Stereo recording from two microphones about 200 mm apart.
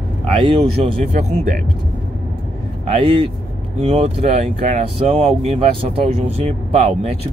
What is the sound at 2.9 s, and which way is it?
Speech, 25° right (ahead or behind).